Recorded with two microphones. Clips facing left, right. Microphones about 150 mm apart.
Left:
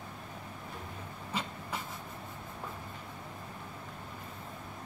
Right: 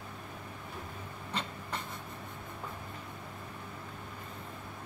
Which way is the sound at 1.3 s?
5° left (ahead or behind).